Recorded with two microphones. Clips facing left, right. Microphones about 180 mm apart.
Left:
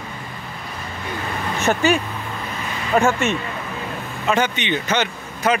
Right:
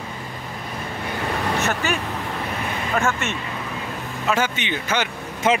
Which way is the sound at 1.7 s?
15° left (ahead or behind).